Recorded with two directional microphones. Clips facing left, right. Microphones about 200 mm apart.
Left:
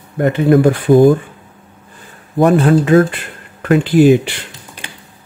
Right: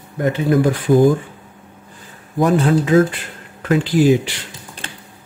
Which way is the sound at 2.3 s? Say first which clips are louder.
Left 4 dB; 60° left (ahead or behind).